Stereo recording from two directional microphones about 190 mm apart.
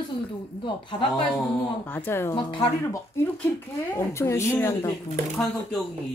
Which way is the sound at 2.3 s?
25° left (ahead or behind).